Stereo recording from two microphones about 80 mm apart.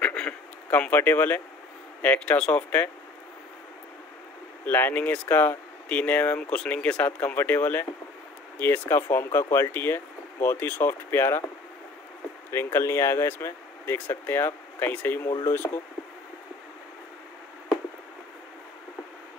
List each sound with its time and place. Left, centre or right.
0.0 s a sound: centre
0.3 s speech: centre
4.6 s speech: left
12.4 s speech: left
15.2 s speech: left
15.5 s speech: left